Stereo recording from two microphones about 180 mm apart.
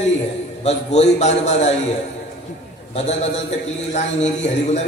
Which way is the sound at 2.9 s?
40° left (ahead or behind).